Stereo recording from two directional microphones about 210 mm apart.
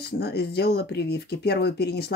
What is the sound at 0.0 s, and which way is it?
Speech, 50° left (ahead or behind).